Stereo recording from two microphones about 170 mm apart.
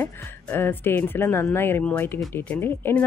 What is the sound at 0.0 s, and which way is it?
Speech, 15° left (ahead or behind).